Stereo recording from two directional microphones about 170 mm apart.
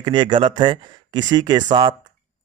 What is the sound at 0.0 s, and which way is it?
A man's voice, 25° right (ahead or behind).